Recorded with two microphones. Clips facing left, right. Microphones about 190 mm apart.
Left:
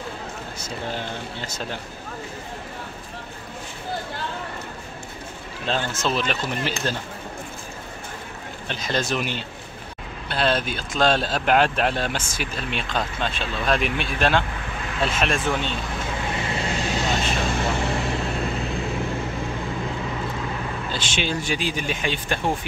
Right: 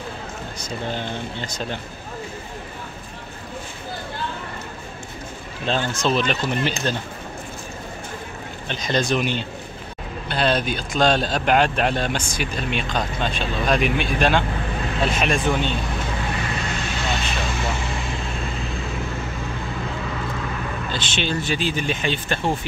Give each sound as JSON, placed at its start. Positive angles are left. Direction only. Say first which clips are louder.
{"t": 0.6, "sound": "speech", "louder": "right 2 dB", "side_deg": 5}
{"t": 5.7, "sound": "speech", "louder": "right 3 dB", "side_deg": 5}
{"t": 8.6, "sound": "speech", "louder": "right 3 dB", "side_deg": 5}
{"t": 16.3, "sound": "vehicle", "louder": "left 1 dB", "side_deg": 25}
{"t": 20.9, "sound": "speech", "louder": "right 1 dB", "side_deg": 10}